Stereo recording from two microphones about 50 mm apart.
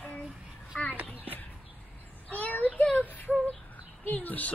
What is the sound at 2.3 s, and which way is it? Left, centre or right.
Child singing, left.